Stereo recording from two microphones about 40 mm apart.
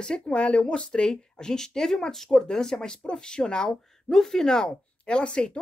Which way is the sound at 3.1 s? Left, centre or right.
Centre.